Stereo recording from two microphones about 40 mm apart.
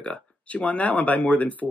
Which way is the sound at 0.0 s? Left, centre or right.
Left.